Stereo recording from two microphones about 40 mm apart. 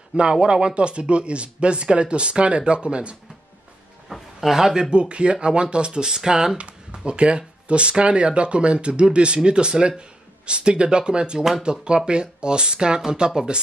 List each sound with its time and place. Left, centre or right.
0.1 s speech: right
4.1 s speech: centre
4.9 s speech: right
7.1 s speech: right